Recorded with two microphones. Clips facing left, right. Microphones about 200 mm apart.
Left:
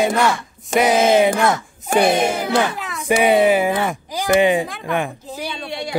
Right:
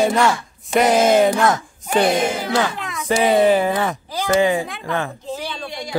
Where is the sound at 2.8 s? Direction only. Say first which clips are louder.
Even; centre (ahead or behind).